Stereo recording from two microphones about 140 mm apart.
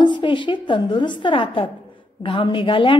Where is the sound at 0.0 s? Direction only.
35° left (ahead or behind).